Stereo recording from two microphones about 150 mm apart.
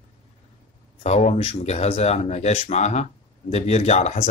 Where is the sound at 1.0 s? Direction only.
45° left (ahead or behind).